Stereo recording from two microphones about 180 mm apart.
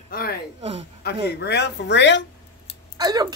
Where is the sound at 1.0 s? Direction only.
65° left (ahead or behind).